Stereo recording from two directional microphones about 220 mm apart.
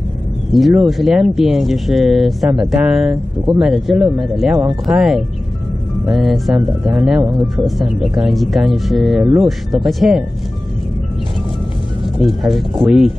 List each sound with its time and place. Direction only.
0.5 s speech: centre (ahead or behind)
9.2 s speech: 20° right (ahead or behind)
9.7 s speech: centre (ahead or behind)
12.2 s speech: centre (ahead or behind)